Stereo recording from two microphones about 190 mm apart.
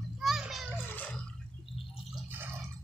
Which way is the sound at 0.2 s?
Centre (ahead or behind).